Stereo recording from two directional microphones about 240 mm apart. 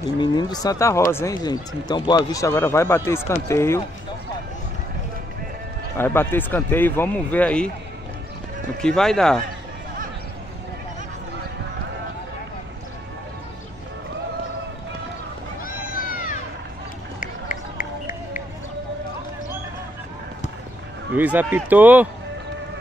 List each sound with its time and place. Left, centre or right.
0.2 s speech: centre
5.9 s speech: centre
8.8 s speech: centre
15.6 s cat: left
17.2 s run: left
21.1 s speech: centre